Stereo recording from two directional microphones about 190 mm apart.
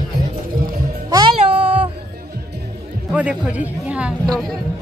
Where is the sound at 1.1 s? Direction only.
20° right (ahead or behind).